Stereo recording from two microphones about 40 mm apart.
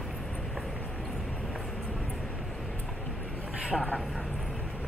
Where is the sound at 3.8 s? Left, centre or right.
Left.